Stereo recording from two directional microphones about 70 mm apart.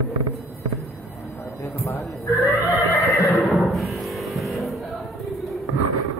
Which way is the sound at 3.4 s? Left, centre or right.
Centre.